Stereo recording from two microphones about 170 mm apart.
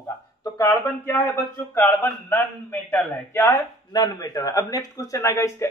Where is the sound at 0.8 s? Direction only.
15° left (ahead or behind).